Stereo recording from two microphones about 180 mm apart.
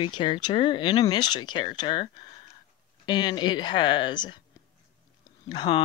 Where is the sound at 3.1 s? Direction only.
25° left (ahead or behind).